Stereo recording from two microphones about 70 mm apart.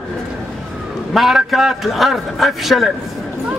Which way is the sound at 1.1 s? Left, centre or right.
Centre.